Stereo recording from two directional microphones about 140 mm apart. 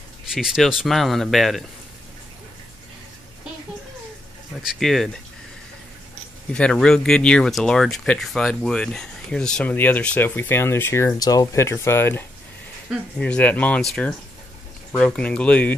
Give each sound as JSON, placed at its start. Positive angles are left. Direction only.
{"t": 0.3, "sound": "speech", "side_deg": -5}
{"t": 4.6, "sound": "speech", "side_deg": 0}
{"t": 6.5, "sound": "speech", "side_deg": 5}